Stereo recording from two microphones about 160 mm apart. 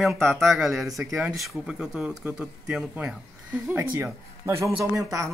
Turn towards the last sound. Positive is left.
turn(degrees=-20)  # may be behind; listen again after turning